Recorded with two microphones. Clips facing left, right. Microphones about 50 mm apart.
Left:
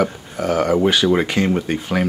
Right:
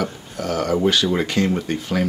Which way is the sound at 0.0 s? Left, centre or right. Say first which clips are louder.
Left 5 dB; left.